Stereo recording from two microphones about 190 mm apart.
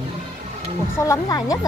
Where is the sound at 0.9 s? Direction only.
15° left (ahead or behind).